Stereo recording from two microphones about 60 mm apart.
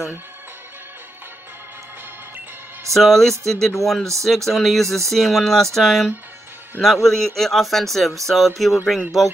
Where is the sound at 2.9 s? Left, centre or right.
Centre.